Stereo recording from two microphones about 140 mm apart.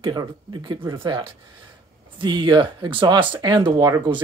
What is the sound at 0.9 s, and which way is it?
Speech, 40° right (ahead or behind).